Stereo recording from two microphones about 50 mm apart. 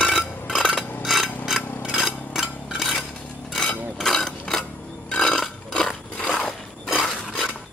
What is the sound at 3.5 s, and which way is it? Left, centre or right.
Mechanisms, centre.